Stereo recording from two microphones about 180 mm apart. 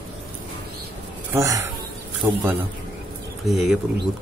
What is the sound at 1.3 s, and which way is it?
Speech, 15° right (ahead or behind).